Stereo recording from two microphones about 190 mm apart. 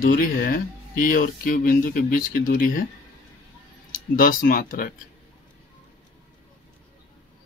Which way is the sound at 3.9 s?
45° left (ahead or behind).